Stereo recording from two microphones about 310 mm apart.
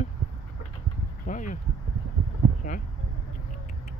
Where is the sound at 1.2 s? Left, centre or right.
Left.